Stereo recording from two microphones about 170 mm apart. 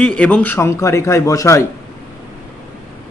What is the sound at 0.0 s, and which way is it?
A man's voice, 5° left (ahead or behind).